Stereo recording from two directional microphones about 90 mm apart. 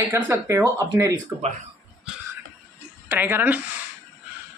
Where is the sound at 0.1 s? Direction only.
30° right (ahead or behind).